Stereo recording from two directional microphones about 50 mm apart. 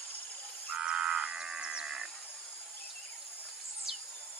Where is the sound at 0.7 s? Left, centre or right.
Centre.